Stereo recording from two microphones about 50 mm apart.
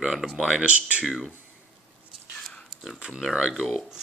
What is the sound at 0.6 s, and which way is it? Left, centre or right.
Speech, right.